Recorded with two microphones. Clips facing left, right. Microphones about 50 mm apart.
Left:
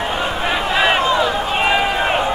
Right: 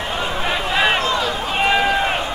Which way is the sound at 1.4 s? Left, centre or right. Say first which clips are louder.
Left 1 dB; centre.